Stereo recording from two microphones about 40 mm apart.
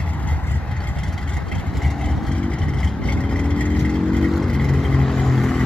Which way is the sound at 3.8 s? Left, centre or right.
Centre.